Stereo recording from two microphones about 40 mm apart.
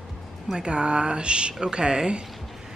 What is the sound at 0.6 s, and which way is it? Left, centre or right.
Speech, right.